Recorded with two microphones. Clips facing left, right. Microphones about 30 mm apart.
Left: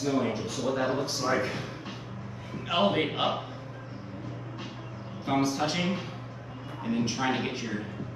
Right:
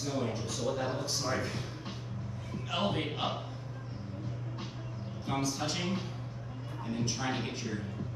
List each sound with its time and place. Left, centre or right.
0.0 s a man's voice: left
2.7 s a man's voice: left
5.2 s a man's voice: left